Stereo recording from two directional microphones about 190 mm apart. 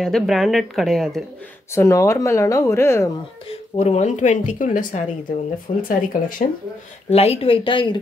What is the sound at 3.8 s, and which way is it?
Speech, 35° left (ahead or behind).